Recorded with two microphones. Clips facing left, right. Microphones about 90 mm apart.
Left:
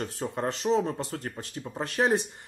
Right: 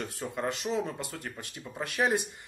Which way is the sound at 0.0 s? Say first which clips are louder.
Left 3 dB; 35° left (ahead or behind).